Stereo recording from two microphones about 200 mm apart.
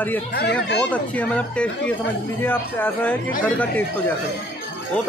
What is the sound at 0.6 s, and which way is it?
Speech, 60° left (ahead or behind).